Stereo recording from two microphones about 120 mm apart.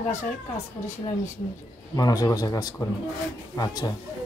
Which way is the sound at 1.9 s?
30° left (ahead or behind).